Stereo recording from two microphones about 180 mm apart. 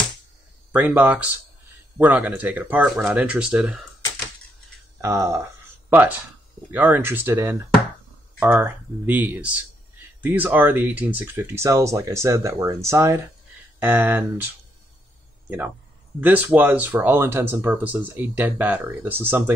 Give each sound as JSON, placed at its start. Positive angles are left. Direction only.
{"t": 0.7, "sound": "speech", "side_deg": -10}
{"t": 5.0, "sound": "speech", "side_deg": -15}
{"t": 16.2, "sound": "speech", "side_deg": -10}